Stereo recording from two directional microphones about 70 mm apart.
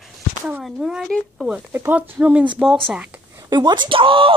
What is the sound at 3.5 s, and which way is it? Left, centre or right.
Speech, right.